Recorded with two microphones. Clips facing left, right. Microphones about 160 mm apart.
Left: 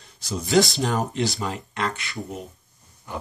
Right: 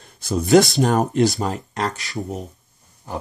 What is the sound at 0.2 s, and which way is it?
Speech, 55° right (ahead or behind).